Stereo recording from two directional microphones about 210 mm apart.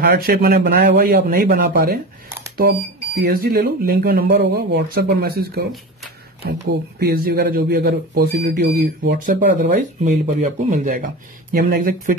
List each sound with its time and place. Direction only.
0.0 s a man's voice: 50° right (ahead or behind)
3.2 s a man's voice: 45° right (ahead or behind)